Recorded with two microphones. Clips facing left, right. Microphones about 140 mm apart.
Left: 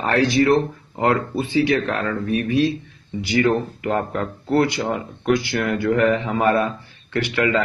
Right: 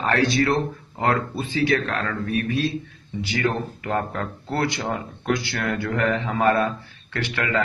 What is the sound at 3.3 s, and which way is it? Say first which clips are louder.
Speech: left 6 dB; 15° left (ahead or behind).